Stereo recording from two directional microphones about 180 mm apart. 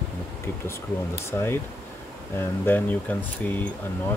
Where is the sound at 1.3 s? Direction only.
15° left (ahead or behind).